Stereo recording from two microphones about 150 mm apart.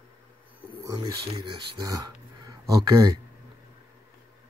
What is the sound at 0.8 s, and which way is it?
Speech, 30° right (ahead or behind).